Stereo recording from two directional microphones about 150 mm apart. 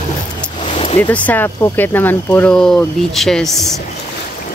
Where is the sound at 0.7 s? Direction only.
50° left (ahead or behind).